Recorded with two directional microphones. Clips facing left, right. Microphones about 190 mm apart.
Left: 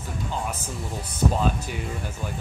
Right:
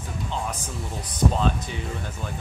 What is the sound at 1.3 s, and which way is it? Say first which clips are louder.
Speech: even; 10° left (ahead or behind).